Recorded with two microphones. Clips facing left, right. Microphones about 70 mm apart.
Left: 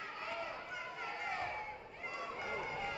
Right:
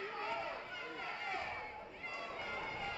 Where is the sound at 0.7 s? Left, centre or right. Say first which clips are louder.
Left 1 dB; centre.